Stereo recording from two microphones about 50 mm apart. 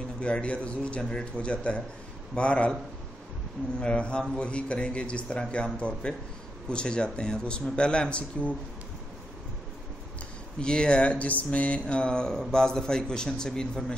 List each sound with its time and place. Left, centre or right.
0.2 s speech: left
3.8 s speech: left
10.6 s a man's voice: centre